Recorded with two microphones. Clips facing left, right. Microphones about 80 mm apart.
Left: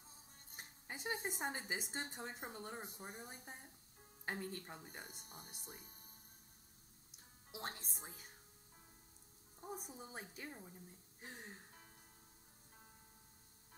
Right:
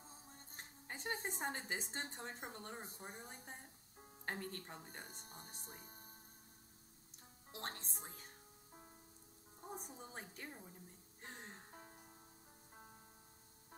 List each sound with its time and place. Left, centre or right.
0.6 s speech: centre
7.5 s speech: centre
9.6 s a woman's voice: centre